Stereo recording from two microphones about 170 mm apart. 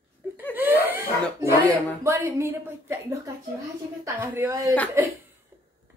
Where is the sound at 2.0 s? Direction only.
15° right (ahead or behind).